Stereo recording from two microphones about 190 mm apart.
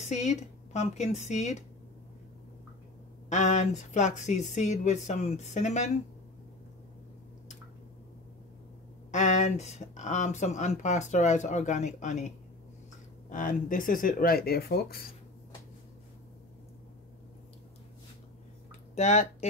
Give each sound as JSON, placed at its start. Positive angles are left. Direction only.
{"t": 0.0, "sound": "speech", "side_deg": 35}
{"t": 3.3, "sound": "speech", "side_deg": 40}
{"t": 9.1, "sound": "speech", "side_deg": 40}
{"t": 13.3, "sound": "speech", "side_deg": 45}
{"t": 18.9, "sound": "speech", "side_deg": 40}